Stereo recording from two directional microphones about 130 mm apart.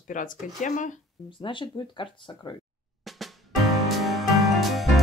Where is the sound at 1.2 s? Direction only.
40° left (ahead or behind).